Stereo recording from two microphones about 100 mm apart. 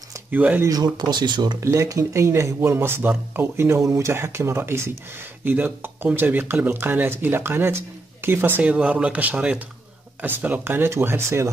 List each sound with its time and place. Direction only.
0.3 s speech: 15° right (ahead or behind)
0.7 s speech: 45° right (ahead or behind)
1.6 s speech: 30° right (ahead or behind)